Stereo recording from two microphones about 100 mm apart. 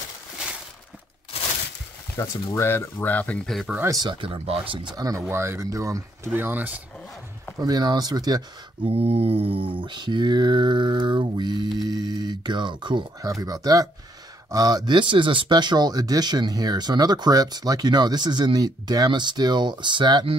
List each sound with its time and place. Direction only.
2.2 s speech: 30° left (ahead or behind)
3.4 s speech: centre (ahead or behind)
4.1 s speech: 60° right (ahead or behind)
4.9 s speech: 35° right (ahead or behind)
6.3 s speech: 20° right (ahead or behind)
7.6 s speech: 45° right (ahead or behind)
8.8 s speech: 90° right; by 13.0 s 50° right (ahead or behind)
13.2 s speech: 35° right (ahead or behind)